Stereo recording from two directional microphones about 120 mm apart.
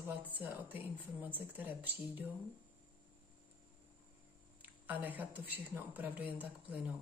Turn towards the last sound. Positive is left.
turn(degrees=-15)  # may be behind; listen again after turning